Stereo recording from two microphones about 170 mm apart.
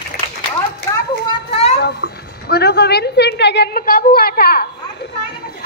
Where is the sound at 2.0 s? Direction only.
90° left.